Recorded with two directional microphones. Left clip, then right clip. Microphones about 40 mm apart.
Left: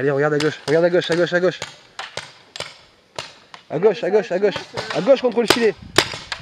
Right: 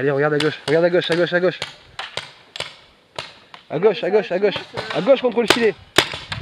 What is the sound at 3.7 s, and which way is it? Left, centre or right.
A man's voice, left.